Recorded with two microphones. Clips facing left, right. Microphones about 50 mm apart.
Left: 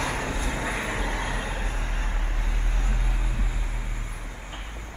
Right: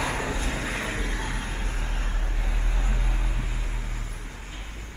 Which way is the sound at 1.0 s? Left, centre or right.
Left.